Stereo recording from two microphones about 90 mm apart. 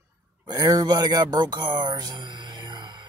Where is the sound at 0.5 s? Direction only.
45° right (ahead or behind).